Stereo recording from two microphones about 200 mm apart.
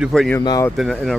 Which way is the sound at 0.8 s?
Centre (ahead or behind).